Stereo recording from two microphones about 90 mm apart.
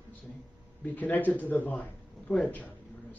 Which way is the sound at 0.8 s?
15° left (ahead or behind).